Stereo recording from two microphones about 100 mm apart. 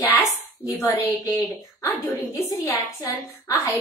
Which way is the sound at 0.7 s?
25° left (ahead or behind).